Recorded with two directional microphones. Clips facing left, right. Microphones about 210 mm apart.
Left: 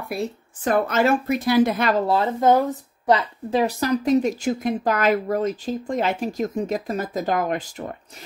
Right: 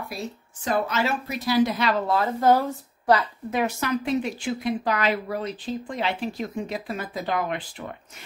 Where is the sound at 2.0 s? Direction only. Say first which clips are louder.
Left 1 dB; 25° left (ahead or behind).